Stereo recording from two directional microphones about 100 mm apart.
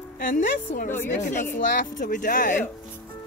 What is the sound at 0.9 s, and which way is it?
Speech, 20° left (ahead or behind).